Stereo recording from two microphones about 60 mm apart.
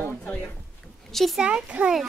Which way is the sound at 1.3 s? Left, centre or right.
Centre.